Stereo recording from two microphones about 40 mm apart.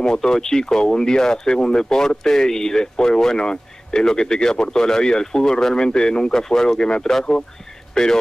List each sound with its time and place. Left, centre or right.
0.0 s speech: centre